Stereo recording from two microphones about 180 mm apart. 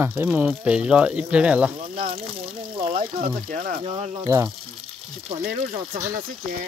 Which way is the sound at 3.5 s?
50° right (ahead or behind).